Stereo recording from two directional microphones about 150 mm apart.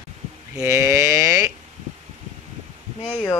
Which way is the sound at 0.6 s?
20° right (ahead or behind).